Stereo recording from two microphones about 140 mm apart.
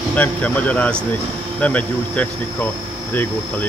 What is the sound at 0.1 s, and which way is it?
Speech, 10° left (ahead or behind).